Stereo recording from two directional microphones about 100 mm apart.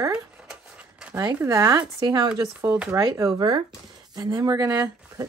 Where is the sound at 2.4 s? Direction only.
25° right (ahead or behind).